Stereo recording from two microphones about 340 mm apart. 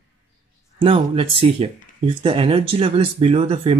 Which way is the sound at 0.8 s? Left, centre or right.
Centre.